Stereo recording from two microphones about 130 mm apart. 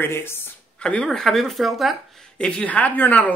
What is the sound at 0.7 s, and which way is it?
Speech, 5° left (ahead or behind).